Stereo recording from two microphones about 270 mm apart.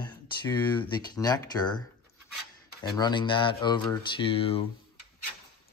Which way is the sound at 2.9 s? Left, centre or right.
Centre.